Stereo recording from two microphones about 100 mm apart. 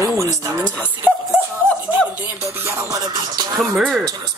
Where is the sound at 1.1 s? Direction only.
20° left (ahead or behind).